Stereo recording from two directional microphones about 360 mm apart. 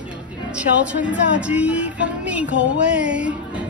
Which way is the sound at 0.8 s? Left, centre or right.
Centre.